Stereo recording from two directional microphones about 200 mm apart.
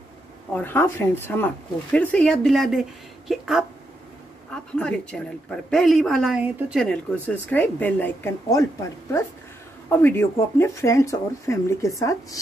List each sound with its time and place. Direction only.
0.5 s speech: 10° left (ahead or behind)
4.7 s speech: 5° left (ahead or behind)
9.8 s speech: 10° left (ahead or behind)